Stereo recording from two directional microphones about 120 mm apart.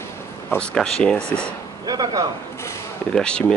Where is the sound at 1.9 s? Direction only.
35° right (ahead or behind).